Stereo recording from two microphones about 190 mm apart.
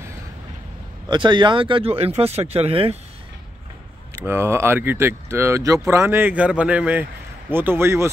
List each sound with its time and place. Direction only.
1.0 s speech: 25° right (ahead or behind)
4.3 s speech: 15° right (ahead or behind)